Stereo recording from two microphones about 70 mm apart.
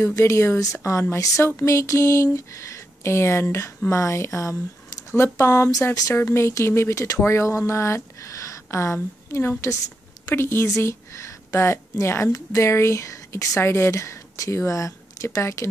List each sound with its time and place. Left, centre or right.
0.2 s a woman's voice: left